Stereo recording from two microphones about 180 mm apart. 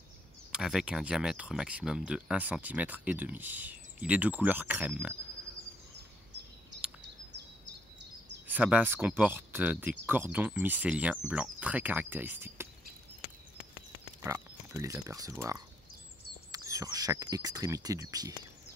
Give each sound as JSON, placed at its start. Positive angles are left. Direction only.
{"t": 0.5, "sound": "speech", "side_deg": -5}
{"t": 8.5, "sound": "speech", "side_deg": -10}
{"t": 14.2, "sound": "speech", "side_deg": -15}